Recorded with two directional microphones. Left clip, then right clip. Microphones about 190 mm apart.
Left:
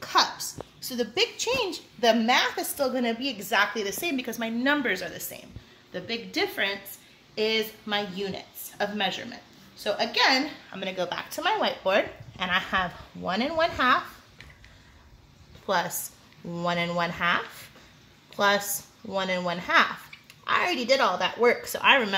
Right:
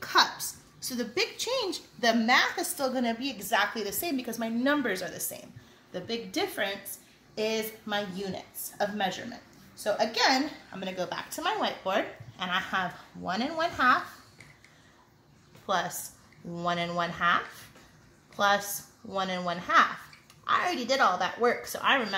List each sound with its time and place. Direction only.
0.0 s a sound: 40° left (ahead or behind)
2.0 s speech: 50° left (ahead or behind)
4.0 s a woman's voice: 15° left (ahead or behind)
10.7 s speech: 15° left (ahead or behind); by 13.9 s 50° left (ahead or behind)
15.6 s a woman's voice: 55° left (ahead or behind)